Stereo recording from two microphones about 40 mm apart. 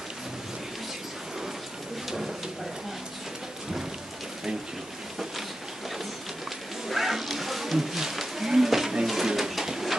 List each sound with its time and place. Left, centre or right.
6.9 s wild animals: centre